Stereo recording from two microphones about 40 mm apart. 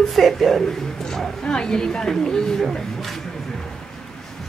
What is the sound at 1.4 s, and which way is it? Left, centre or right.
A woman's voice, left.